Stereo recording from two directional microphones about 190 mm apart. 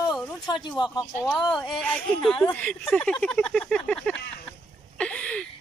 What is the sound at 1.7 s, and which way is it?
Speech, 5° left (ahead or behind).